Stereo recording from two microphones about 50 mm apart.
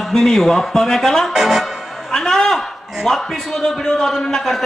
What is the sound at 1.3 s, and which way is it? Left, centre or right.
Speech, centre.